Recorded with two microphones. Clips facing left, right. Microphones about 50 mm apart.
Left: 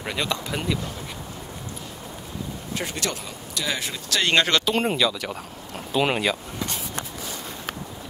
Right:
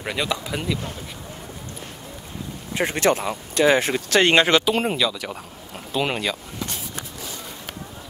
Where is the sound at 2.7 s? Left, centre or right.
Right.